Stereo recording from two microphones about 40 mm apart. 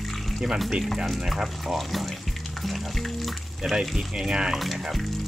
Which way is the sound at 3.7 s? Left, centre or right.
Centre.